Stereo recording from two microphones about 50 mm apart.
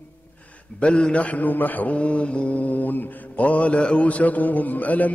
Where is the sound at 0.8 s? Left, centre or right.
Left.